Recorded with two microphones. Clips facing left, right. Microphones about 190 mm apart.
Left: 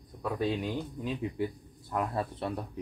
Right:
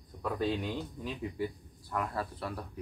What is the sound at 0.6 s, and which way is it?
Speech, 20° left (ahead or behind).